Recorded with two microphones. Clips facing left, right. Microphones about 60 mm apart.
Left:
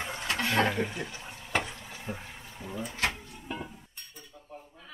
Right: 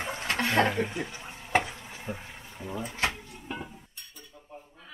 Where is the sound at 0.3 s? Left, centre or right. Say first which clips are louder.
Right 2 dB; right.